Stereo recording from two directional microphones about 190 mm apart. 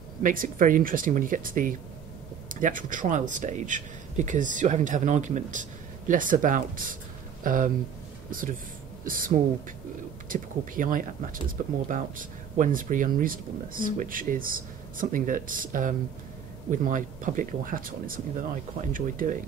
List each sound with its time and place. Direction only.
0.2 s speech: 45° right (ahead or behind)